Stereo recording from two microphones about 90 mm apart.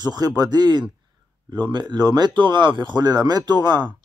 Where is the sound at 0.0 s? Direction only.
50° right (ahead or behind).